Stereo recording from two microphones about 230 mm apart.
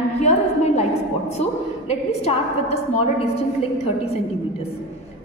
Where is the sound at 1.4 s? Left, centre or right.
Left.